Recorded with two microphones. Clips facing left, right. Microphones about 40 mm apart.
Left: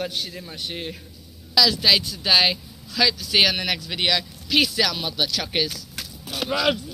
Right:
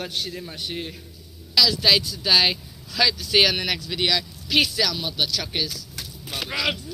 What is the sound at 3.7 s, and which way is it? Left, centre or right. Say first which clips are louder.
Speech: even; left.